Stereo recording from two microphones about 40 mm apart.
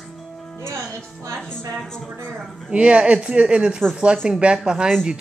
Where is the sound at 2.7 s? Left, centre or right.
Right.